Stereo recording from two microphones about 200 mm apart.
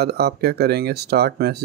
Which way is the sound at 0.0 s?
55° right (ahead or behind).